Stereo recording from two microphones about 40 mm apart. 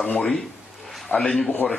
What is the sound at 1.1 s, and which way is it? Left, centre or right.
Speech, left.